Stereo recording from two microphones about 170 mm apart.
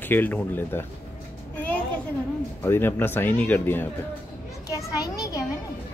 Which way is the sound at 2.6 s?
15° left (ahead or behind).